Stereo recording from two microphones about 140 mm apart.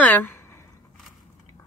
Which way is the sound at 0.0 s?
15° left (ahead or behind).